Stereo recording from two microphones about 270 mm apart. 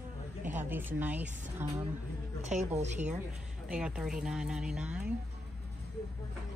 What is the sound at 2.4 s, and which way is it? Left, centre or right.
Speech, right.